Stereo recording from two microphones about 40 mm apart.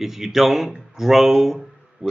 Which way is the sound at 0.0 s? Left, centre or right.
Centre.